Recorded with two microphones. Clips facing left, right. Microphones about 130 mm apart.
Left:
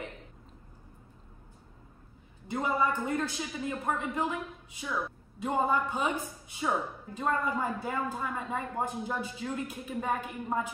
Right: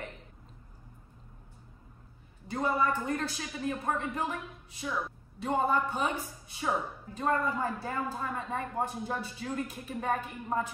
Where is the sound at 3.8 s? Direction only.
5° left (ahead or behind).